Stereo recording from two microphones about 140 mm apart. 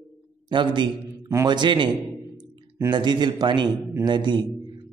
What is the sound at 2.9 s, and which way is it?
A man's voice, 30° right (ahead or behind).